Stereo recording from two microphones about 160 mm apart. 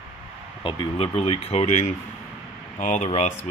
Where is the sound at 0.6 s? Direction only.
30° left (ahead or behind); by 3.1 s 45° left (ahead or behind).